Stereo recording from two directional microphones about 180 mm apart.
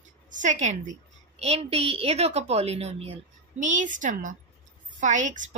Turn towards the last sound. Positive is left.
turn(degrees=-45)  # may be behind; listen again after turning